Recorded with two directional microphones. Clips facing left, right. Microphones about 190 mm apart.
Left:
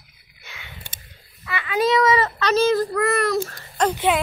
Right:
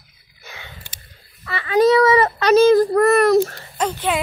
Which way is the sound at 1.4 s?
35° right (ahead or behind).